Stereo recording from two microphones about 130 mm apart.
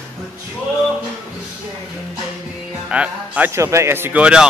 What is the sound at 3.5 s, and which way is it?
A man's voice, 20° right (ahead or behind).